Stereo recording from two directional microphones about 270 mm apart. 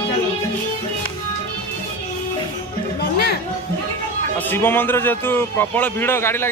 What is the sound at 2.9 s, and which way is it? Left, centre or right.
Music, left.